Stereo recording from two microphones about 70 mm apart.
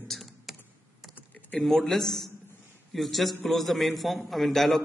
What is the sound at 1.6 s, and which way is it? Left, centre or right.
A man's voice, centre.